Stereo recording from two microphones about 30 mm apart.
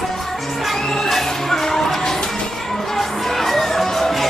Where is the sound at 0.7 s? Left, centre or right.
Centre.